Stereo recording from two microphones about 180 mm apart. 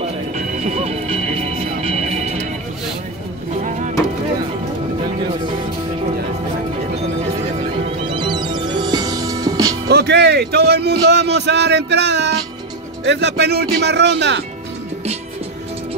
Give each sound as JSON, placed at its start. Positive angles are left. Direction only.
{"t": 0.7, "sound": "music", "side_deg": -35}
{"t": 8.1, "sound": "music", "side_deg": -25}
{"t": 9.8, "sound": "speech", "side_deg": -70}